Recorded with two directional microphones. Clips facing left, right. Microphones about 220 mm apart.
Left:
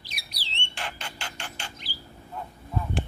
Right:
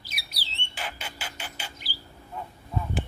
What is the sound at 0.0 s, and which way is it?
Bird, 5° right (ahead or behind).